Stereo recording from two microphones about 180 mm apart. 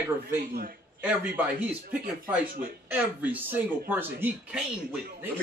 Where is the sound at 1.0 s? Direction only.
10° right (ahead or behind).